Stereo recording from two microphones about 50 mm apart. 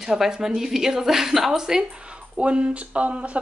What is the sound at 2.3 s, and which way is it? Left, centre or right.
Speech, right.